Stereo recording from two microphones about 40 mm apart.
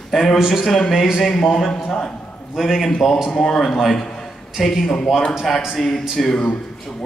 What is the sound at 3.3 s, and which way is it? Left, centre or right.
A man's voice, centre.